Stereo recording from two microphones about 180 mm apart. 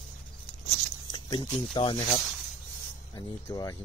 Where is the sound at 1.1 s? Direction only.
25° left (ahead or behind).